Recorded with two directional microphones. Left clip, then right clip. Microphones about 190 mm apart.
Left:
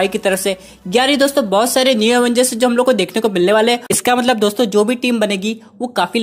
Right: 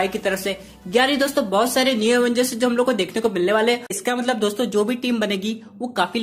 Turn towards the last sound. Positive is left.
turn(degrees=35)  # may be behind; listen again after turning